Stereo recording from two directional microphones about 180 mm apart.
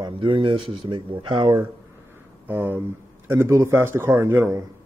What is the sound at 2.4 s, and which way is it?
Speech, 10° right (ahead or behind).